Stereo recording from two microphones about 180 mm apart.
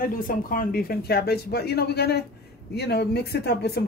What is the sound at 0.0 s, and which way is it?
A woman's voice, 50° left (ahead or behind).